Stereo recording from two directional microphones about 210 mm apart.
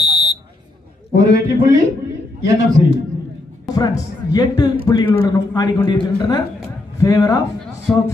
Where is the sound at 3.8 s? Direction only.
15° left (ahead or behind).